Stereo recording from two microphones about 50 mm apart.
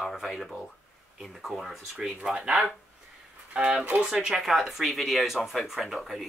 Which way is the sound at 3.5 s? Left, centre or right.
Right.